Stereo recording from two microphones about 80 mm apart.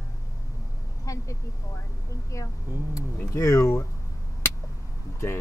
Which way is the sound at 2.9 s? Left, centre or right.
Left.